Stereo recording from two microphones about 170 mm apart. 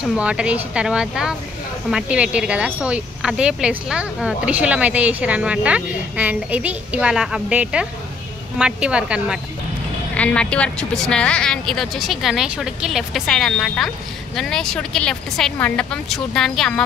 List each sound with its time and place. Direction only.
0.0 s speech: 5° right (ahead or behind)
10.1 s speech: 5° left (ahead or behind)